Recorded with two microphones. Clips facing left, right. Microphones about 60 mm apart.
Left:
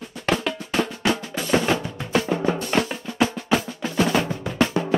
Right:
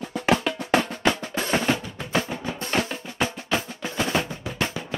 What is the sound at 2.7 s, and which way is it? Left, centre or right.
Drum, centre.